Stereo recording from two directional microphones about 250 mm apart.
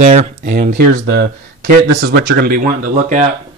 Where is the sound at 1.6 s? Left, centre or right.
Right.